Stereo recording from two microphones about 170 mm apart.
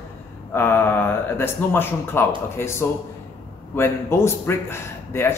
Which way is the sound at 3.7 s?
15° left (ahead or behind).